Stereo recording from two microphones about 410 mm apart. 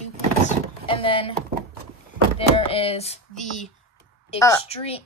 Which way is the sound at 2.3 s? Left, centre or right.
Centre.